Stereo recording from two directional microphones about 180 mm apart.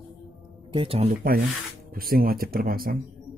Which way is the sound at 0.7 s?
30° right (ahead or behind).